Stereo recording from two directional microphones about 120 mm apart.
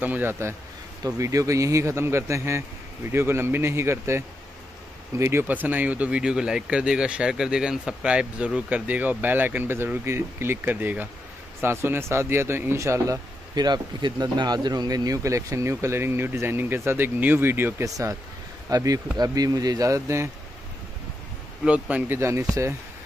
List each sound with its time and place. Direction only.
0.0 s speech: 15° right (ahead or behind)
21.6 s speech: 10° right (ahead or behind)
22.2 s speech: 25° right (ahead or behind)